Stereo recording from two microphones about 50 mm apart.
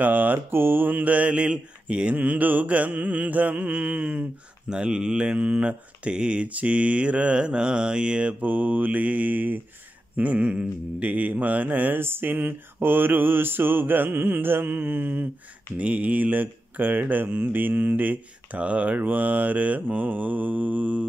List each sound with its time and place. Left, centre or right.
0.0 s mantra: right
2.1 s mantra: right
4.6 s speech: centre
5.4 s mantra: right
8.4 s mantra: right
12.0 s mantra: right
18.6 s mantra: right